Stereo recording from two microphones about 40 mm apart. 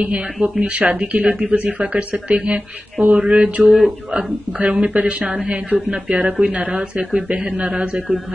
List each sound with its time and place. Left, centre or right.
0.0 s speech: right
0.6 s speech: right